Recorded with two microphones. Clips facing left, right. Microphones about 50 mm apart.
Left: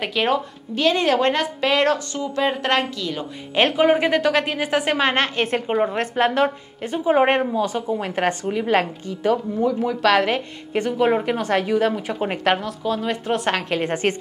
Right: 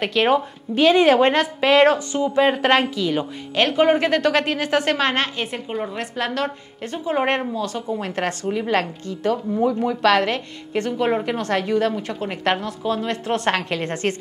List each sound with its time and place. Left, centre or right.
0.0 s a woman's voice: centre
0.3 s speech: centre
3.7 s a woman's voice: centre
5.1 s a woman's voice: left
5.7 s a woman's voice: left
6.4 s a woman's voice: centre
13.1 s a woman's voice: centre